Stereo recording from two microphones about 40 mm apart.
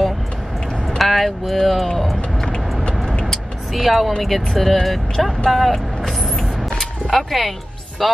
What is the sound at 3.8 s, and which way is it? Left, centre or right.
Speech, centre.